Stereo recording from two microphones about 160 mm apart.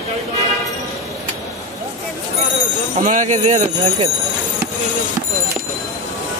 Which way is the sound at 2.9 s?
55° right (ahead or behind).